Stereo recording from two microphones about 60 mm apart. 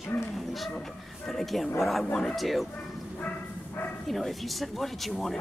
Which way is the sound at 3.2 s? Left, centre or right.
Left.